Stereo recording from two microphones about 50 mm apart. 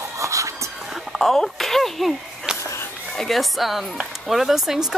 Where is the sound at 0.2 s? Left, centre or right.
Right.